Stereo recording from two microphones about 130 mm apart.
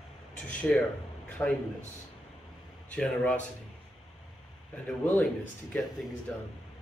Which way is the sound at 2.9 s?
10° left (ahead or behind).